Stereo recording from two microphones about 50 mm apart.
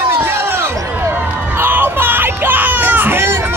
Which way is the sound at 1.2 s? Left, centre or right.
Right.